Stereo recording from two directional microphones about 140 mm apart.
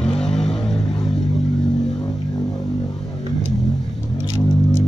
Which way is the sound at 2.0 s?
25° left (ahead or behind).